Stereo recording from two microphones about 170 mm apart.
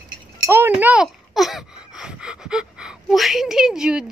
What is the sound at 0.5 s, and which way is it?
Speech, 10° right (ahead or behind).